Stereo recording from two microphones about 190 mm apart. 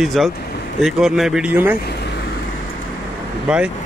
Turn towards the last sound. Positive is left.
turn(degrees=-5)  # may be behind; listen again after turning